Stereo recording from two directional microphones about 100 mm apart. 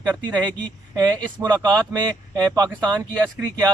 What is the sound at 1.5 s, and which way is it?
Speech, 45° right (ahead or behind).